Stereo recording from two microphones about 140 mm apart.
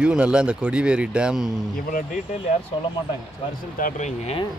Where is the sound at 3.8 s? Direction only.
65° left (ahead or behind).